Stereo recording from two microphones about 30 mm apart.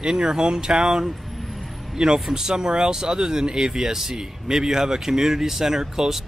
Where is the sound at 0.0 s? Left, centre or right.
Right.